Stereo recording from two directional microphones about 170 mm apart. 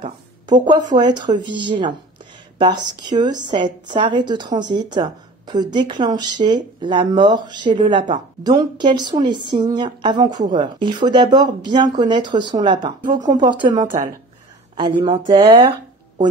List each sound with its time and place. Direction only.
0.0 s speech: 30° right (ahead or behind)
13.8 s speech: 50° right (ahead or behind)
14.8 s speech: 25° right (ahead or behind)